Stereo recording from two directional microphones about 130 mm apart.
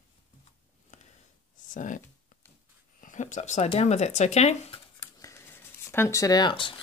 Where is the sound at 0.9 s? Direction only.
70° left (ahead or behind).